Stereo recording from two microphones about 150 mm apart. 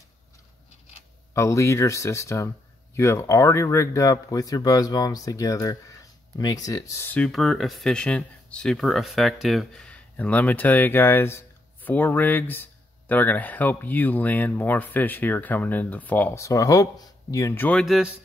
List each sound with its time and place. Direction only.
1.3 s speech: 20° left (ahead or behind)
7.2 s speech: centre (ahead or behind); by 17.6 s 20° left (ahead or behind)
17.6 s speech: centre (ahead or behind)